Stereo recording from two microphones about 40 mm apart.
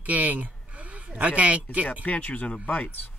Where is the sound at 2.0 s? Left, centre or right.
Left.